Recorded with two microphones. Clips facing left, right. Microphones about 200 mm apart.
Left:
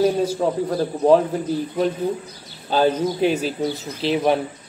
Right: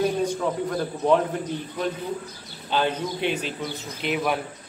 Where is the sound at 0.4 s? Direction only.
35° left (ahead or behind).